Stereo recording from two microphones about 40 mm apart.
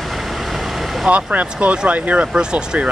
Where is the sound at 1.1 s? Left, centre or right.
Right.